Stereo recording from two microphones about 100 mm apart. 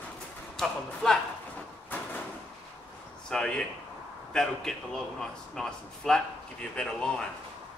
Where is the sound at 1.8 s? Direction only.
15° left (ahead or behind).